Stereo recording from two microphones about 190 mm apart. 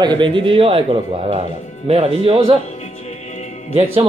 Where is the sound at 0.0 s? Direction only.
25° right (ahead or behind).